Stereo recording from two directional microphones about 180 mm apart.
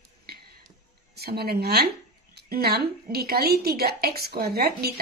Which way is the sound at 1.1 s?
60° right (ahead or behind).